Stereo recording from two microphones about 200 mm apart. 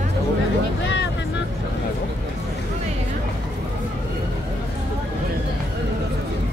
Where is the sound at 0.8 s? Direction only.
60° left (ahead or behind).